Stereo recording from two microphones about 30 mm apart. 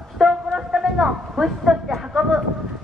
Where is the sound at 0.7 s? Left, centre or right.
Centre.